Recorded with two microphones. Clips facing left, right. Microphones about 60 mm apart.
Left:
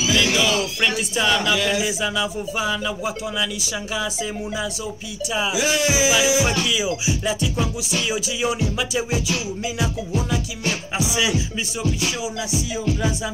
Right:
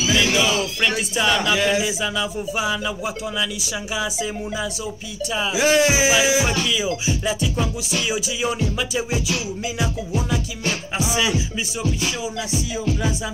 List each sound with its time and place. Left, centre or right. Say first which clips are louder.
0.1 s music: even; centre
1.5 s speech: right 2 dB; right
1.9 s music: left 1 dB; centre
5.3 s music: left 1 dB; centre
5.6 s speech: right 5 dB; right
6.4 s music: even; centre
12.8 s music: left 1 dB; centre